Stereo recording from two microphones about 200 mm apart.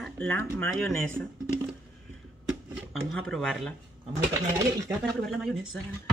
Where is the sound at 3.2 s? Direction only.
Centre (ahead or behind).